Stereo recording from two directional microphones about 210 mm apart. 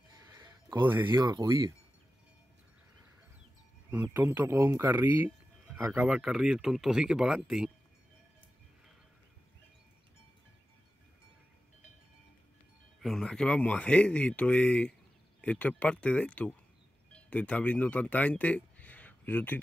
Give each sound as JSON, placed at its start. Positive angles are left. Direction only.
{"t": 0.7, "sound": "speech", "side_deg": -10}
{"t": 4.0, "sound": "speech", "side_deg": -10}
{"t": 13.0, "sound": "speech", "side_deg": 0}